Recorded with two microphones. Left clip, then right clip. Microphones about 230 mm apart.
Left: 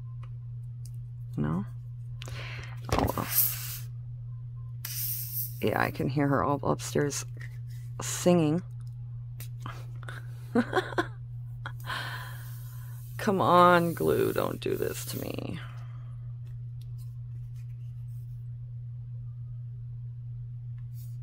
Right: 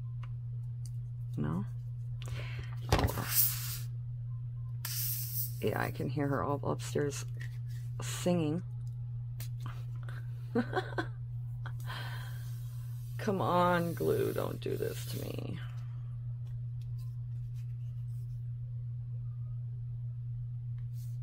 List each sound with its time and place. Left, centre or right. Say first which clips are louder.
1.3 s music: left 5 dB; left
4.8 s spray: left 1 dB; centre
5.6 s speech: left 7 dB; left
9.6 s a sound: left 6 dB; left
11.6 s gasp: left 9 dB; left
13.2 s speech: left 9 dB; left